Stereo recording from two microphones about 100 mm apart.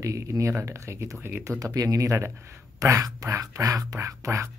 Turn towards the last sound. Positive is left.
turn(degrees=-30)  # may be behind; listen again after turning